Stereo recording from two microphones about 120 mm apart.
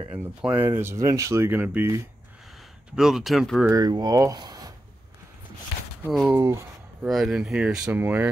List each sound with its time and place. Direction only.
0.4 s speech: 10° right (ahead or behind)
0.7 s speech: 25° right (ahead or behind)
3.0 s speech: 5° right (ahead or behind)
3.7 s speech: 35° right (ahead or behind)
6.3 s speech: 20° right (ahead or behind)
7.1 s speech: centre (ahead or behind)